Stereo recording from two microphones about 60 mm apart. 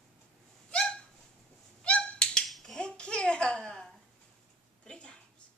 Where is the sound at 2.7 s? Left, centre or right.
Centre.